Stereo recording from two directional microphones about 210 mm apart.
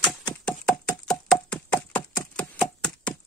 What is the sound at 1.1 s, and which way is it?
Knock, 5° left (ahead or behind).